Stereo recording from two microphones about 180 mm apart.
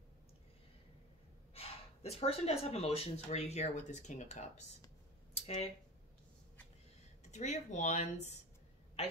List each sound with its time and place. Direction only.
1.5 s speech: 35° left (ahead or behind)
5.3 s a sound: 35° left (ahead or behind)
7.2 s speech: 40° left (ahead or behind)